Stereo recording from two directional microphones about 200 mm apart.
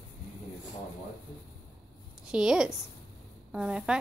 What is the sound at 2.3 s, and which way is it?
Speech, 5° right (ahead or behind).